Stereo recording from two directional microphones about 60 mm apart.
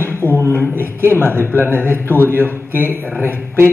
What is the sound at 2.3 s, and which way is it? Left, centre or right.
Speech, right.